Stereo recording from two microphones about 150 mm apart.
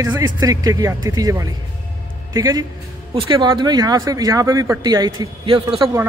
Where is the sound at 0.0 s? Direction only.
25° right (ahead or behind).